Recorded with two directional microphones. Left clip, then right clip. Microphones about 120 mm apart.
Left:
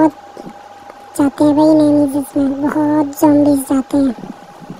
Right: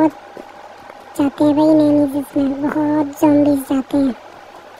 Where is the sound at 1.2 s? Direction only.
40° left (ahead or behind).